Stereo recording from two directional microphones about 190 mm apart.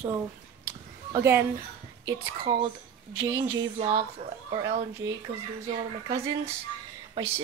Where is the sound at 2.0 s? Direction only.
25° right (ahead or behind).